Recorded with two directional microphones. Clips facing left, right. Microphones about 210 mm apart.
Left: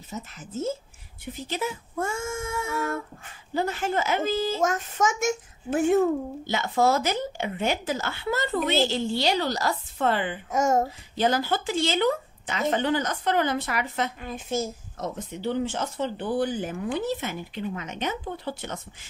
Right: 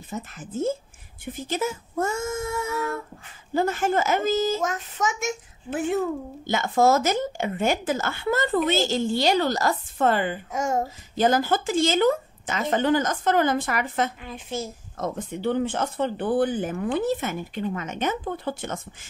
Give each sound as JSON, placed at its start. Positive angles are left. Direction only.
{"t": 0.1, "sound": "a woman's voice", "side_deg": -50}
{"t": 4.6, "sound": "a child's voice", "side_deg": 45}
{"t": 6.4, "sound": "a woman's voice", "side_deg": -50}
{"t": 10.5, "sound": "a child's voice", "side_deg": 45}
{"t": 11.1, "sound": "a woman's voice", "side_deg": -45}
{"t": 14.2, "sound": "a child's voice", "side_deg": 45}
{"t": 15.0, "sound": "a woman's voice", "side_deg": -55}